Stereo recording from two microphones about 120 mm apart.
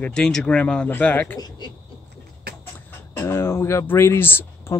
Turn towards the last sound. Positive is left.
turn(degrees=20)  # may be behind; listen again after turning